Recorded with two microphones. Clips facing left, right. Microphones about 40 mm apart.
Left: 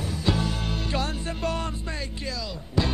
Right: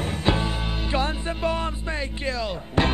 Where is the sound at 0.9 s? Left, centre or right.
Centre.